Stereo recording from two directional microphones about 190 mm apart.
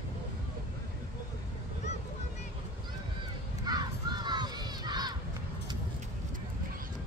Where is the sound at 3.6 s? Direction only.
20° right (ahead or behind).